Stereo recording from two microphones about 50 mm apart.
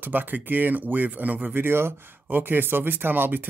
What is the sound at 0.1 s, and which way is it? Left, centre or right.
Speech, right.